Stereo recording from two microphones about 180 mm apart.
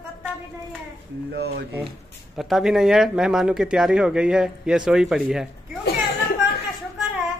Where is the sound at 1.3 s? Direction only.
65° right (ahead or behind).